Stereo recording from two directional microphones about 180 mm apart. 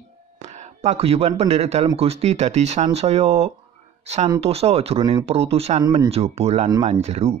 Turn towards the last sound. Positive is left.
turn(degrees=-35)  # may be behind; listen again after turning